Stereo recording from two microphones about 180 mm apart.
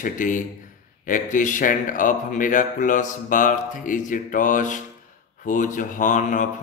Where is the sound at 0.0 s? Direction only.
45° left (ahead or behind).